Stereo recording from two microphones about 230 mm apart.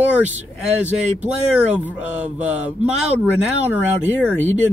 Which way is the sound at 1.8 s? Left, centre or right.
Centre.